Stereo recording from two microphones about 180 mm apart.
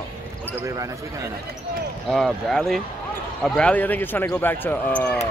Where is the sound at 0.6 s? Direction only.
15° right (ahead or behind).